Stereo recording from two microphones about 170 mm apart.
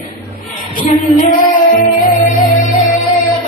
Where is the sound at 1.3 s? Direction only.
55° left (ahead or behind).